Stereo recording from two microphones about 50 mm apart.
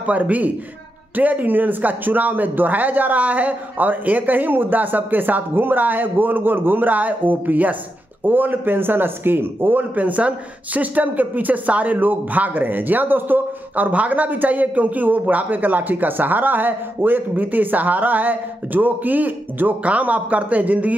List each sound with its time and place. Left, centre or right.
0.0 s a man's voice: right